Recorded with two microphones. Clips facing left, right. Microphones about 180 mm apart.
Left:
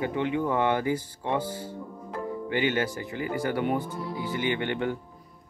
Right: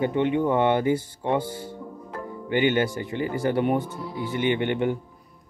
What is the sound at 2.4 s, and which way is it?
Speech, 20° right (ahead or behind).